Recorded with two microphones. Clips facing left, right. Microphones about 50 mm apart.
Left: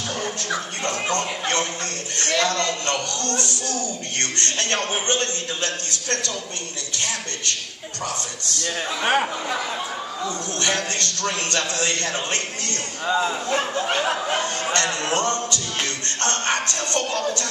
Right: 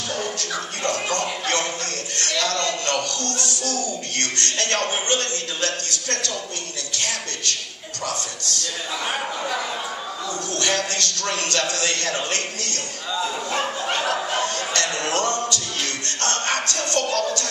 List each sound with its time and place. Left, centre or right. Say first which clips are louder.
0.2 s speech: left 1 dB; left
2.1 s music: left 3 dB; left
10.2 s music: even; left
13.0 s speech: left 5 dB; left
14.0 s music: even; left